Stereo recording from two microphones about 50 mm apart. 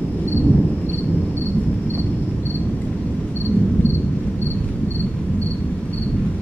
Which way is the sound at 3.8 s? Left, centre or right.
Left.